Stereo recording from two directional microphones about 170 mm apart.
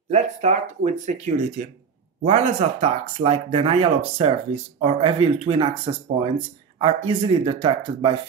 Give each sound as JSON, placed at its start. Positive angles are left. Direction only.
{"t": 0.1, "sound": "speech", "side_deg": -45}